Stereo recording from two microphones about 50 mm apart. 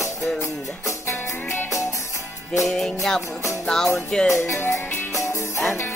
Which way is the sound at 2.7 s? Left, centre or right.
Centre.